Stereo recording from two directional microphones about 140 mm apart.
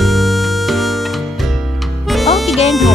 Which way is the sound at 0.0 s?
Centre (ahead or behind).